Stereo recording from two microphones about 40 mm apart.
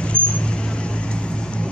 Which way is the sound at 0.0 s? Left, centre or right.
Left.